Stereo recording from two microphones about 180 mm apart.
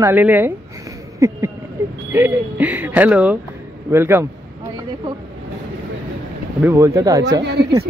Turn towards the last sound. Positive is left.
turn(degrees=-70)  # may be behind; listen again after turning